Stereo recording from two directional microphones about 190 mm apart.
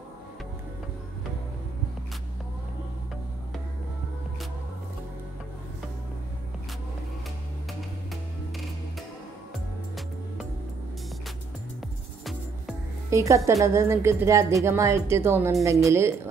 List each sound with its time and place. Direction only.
13.1 s a woman's voice: 15° right (ahead or behind)